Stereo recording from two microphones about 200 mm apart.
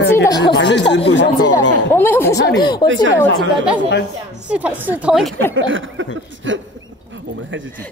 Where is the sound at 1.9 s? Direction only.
10° left (ahead or behind).